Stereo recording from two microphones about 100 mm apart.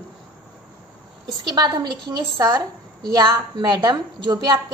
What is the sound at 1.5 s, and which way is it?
A woman's voice, 45° right (ahead or behind).